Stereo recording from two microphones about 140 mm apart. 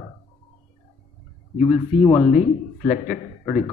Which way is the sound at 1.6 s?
40° left (ahead or behind).